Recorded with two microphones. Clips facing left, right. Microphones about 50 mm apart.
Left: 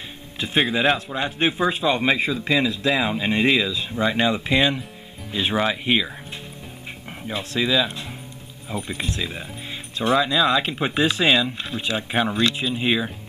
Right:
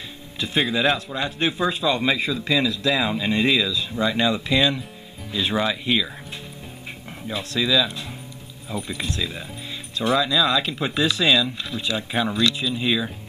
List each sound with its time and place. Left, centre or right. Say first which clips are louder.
0.4 s speech: left 1 dB; left
7.2 s speech: even; left